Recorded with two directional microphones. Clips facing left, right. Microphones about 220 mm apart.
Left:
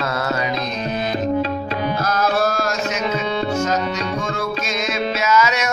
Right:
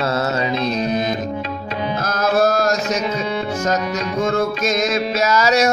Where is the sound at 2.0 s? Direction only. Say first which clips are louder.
Right 4 dB; 45° right (ahead or behind).